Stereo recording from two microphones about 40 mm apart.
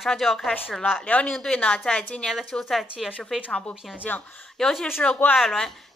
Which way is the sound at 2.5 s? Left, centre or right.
Centre.